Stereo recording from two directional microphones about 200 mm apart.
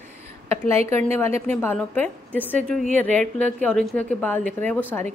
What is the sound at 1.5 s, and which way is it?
A woman's voice, 10° left (ahead or behind).